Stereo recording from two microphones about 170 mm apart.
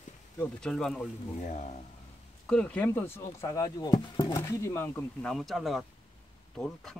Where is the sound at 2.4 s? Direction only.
5° left (ahead or behind).